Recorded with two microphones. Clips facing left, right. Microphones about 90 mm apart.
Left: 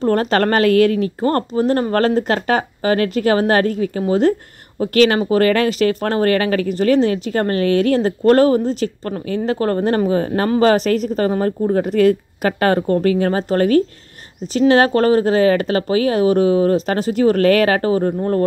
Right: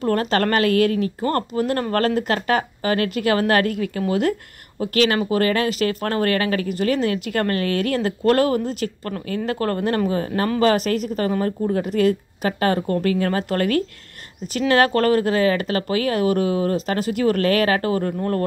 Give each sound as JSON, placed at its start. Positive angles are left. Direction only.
{"t": 0.0, "sound": "speech", "side_deg": 35}
{"t": 1.6, "sound": "speech", "side_deg": 25}
{"t": 7.3, "sound": "speech", "side_deg": 25}
{"t": 7.6, "sound": "speech", "side_deg": -45}
{"t": 7.9, "sound": "speech", "side_deg": 35}
{"t": 12.8, "sound": "speech", "side_deg": 30}
{"t": 17.9, "sound": "speech", "side_deg": 20}